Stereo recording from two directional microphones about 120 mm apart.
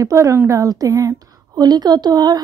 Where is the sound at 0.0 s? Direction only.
25° right (ahead or behind).